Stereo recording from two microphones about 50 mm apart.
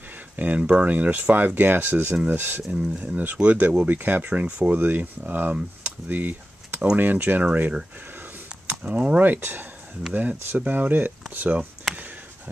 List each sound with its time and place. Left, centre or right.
0.4 s speech: right
2.7 s speech: right
3.4 s speech: right
8.6 s speech: right